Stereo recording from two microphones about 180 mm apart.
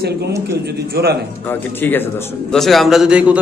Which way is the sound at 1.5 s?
10° left (ahead or behind).